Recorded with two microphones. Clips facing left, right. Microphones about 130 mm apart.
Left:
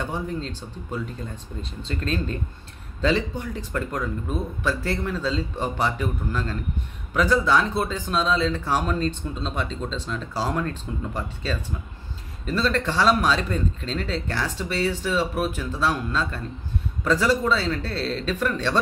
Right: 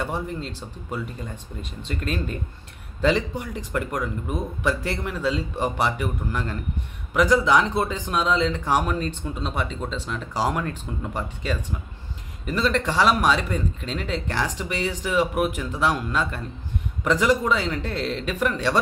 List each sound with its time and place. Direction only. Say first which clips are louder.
0.0 s speech: even; 10° right (ahead or behind)